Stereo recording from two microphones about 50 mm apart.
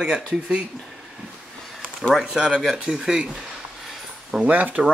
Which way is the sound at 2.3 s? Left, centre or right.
Centre.